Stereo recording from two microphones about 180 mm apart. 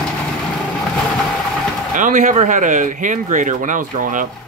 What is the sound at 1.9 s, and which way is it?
Speech, 45° right (ahead or behind).